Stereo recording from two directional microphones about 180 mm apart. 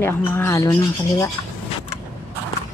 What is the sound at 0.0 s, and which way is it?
Speech, 15° left (ahead or behind).